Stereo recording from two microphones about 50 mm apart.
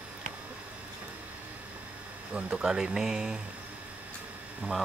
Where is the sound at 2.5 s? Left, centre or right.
Centre.